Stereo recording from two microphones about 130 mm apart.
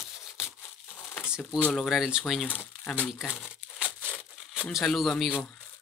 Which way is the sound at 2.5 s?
15° left (ahead or behind).